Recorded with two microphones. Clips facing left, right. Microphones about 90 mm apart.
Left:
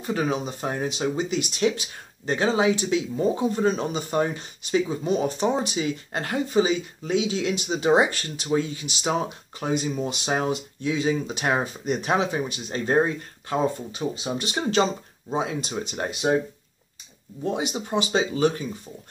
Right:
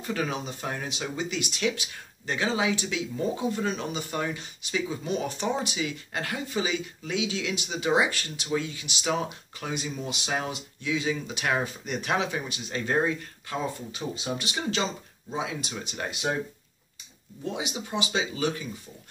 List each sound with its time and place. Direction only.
0.0 s speech: 25° left (ahead or behind)
17.4 s speech: 40° left (ahead or behind)